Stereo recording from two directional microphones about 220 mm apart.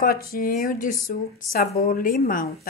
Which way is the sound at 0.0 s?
40° left (ahead or behind).